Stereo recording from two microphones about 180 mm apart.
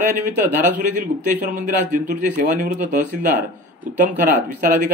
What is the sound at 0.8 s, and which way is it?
A man's voice, 45° right (ahead or behind).